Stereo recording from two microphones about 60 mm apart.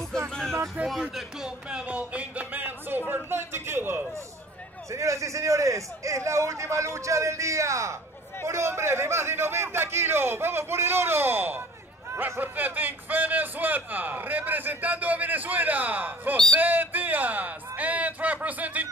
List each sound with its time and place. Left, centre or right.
0.3 s music: centre
0.8 s a man's voice: right
1.1 s speech: centre
1.9 s a sound: right
3.1 s speech: right
4.9 s a man's voice: right